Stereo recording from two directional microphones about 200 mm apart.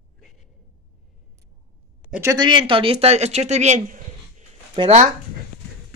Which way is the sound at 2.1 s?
15° right (ahead or behind).